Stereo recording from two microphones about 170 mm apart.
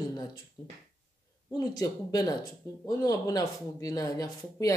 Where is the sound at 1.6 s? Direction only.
20° left (ahead or behind).